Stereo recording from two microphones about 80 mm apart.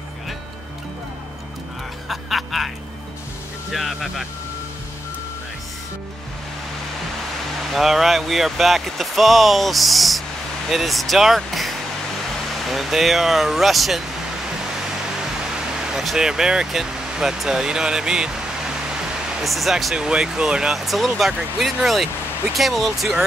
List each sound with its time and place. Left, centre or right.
2.0 s music: centre
3.7 s speech: centre
7.7 s speech: centre
15.5 s speech: centre
19.4 s speech: centre